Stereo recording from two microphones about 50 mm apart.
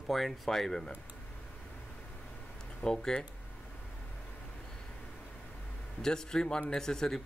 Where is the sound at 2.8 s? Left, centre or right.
Centre.